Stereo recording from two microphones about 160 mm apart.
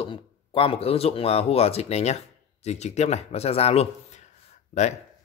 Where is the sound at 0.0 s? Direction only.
35° left (ahead or behind).